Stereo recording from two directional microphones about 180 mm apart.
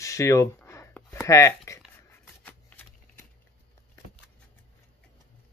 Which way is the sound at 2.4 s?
10° left (ahead or behind).